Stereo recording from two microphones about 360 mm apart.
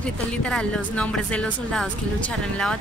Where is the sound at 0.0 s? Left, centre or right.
Centre.